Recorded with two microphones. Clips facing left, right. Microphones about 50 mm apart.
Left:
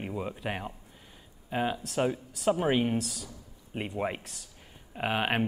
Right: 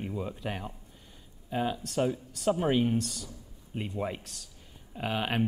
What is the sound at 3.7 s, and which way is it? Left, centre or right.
Speech, left.